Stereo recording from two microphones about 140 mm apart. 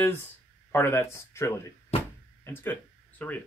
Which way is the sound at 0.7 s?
15° left (ahead or behind).